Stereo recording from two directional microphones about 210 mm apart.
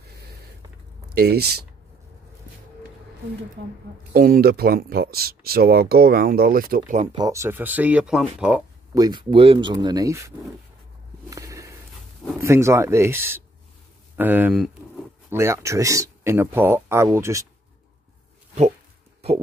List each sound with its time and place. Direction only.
1.1 s speech: 50° right (ahead or behind)
4.1 s speech: 45° right (ahead or behind)
7.2 s speech: 15° right (ahead or behind)
8.9 s speech: 20° right (ahead or behind)
11.2 s walk: 15° right (ahead or behind)
12.4 s speech: 15° right (ahead or behind)
14.1 s a sound: 10° right (ahead or behind)
15.3 s speech: 15° right (ahead or behind)